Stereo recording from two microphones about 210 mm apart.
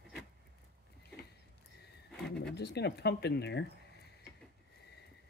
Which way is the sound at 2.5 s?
50° left (ahead or behind).